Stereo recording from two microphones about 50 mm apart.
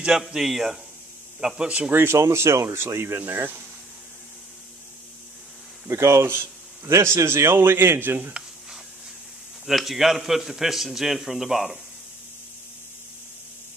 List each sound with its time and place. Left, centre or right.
0.1 s a man's voice: centre
1.6 s speech: centre
1.9 s a man's voice: right
2.1 s speech: right
3.2 s a man's voice: right
5.9 s speech: right
6.2 s a man's voice: right
8.3 s a sound: centre
9.7 s speech: centre